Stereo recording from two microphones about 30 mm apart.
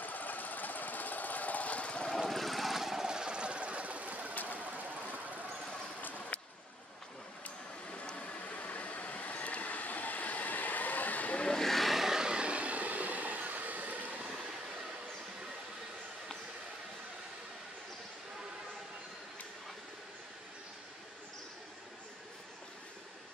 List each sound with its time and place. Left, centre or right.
0.0 s engine: left
2.1 s vehicle: centre
3.1 s engine: right
4.5 s a sound: right
8.5 s vehicle: left
11.6 s vehicle: centre
11.9 s vehicle: centre
12.2 s vehicle: right
12.4 s train: right